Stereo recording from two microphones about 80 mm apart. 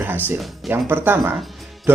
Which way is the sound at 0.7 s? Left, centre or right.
Right.